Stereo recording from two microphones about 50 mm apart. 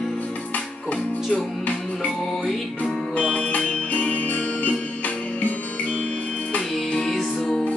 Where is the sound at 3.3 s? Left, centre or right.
Left.